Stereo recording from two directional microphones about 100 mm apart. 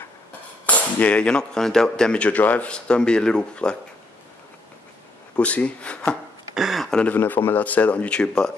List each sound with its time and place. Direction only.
0.7 s speech: 15° left (ahead or behind)
5.3 s speech: 10° left (ahead or behind)
6.5 s a sound: 5° right (ahead or behind)
7.0 s speech: 15° left (ahead or behind)